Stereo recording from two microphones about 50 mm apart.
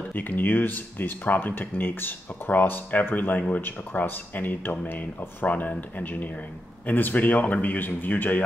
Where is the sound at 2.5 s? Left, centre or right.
Left.